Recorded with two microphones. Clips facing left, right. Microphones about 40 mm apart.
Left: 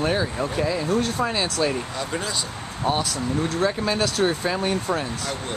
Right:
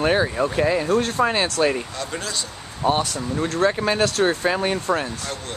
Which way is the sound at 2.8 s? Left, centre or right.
Centre.